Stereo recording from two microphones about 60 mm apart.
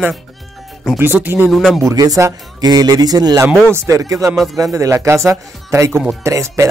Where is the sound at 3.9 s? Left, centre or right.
Right.